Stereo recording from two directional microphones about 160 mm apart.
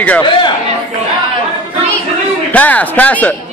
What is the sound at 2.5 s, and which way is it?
Speech, 10° left (ahead or behind).